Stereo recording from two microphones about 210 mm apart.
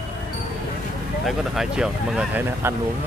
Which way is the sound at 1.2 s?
Centre (ahead or behind).